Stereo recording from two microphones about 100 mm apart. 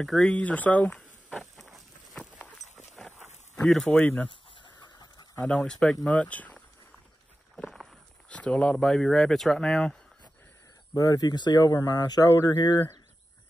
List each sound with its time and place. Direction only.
0.0 s speech: 5° left (ahead or behind)
1.3 s a sound: centre (ahead or behind)
2.1 s run: 15° left (ahead or behind)
3.0 s a sound: 5° left (ahead or behind)
3.6 s speech: 5° left (ahead or behind)
4.3 s chicken: 50° left (ahead or behind)
5.4 s speech: 5° left (ahead or behind)
7.5 s walk: 5° left (ahead or behind)
8.3 s speech: 10° left (ahead or behind)
10.9 s speech: 35° left (ahead or behind)